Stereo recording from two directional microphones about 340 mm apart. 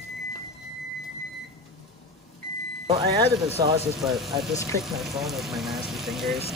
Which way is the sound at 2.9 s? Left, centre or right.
Centre.